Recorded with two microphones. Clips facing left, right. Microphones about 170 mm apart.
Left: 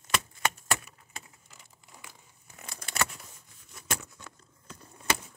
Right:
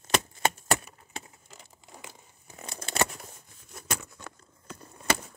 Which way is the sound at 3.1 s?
45° right (ahead or behind).